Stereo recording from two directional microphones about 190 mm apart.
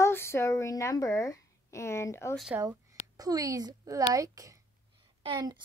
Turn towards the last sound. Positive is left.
turn(degrees=-25)  # may be behind; listen again after turning